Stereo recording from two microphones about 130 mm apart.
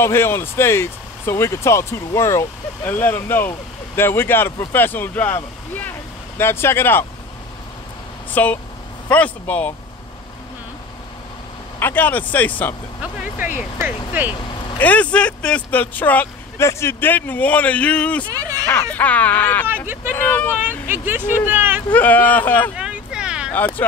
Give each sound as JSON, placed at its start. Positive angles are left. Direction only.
{"t": 0.0, "sound": "speech", "side_deg": 20}
{"t": 8.4, "sound": "speech", "side_deg": 15}
{"t": 11.8, "sound": "speech", "side_deg": 15}
{"t": 13.7, "sound": "speech", "side_deg": -10}
{"t": 14.8, "sound": "speech", "side_deg": 10}
{"t": 18.3, "sound": "speech", "side_deg": -30}
{"t": 18.7, "sound": "speech", "side_deg": 15}
{"t": 20.9, "sound": "speech", "side_deg": -15}
{"t": 21.9, "sound": "speech", "side_deg": 10}
{"t": 22.8, "sound": "a sound", "side_deg": -5}